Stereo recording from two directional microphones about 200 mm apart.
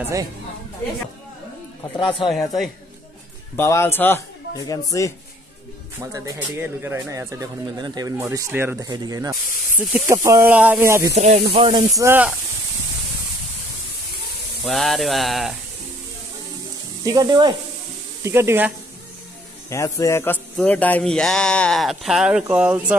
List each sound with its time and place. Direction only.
1.8 s speech: 25° left (ahead or behind)
3.5 s speech: 10° left (ahead or behind)
6.1 s speech: 10° right (ahead or behind)
11.1 s speech: 35° right (ahead or behind)
12.0 s speech: 10° right (ahead or behind)
14.6 s a sound: centre (ahead or behind)
17.0 s speech: 20° right (ahead or behind)
19.7 s a sound: 15° left (ahead or behind); by 22.9 s 5° right (ahead or behind)